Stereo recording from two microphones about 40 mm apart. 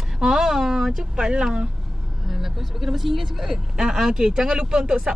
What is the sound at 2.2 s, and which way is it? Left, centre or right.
A woman's voice, centre.